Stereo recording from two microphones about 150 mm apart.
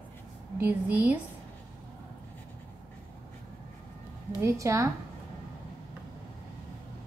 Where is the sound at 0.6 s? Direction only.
10° right (ahead or behind).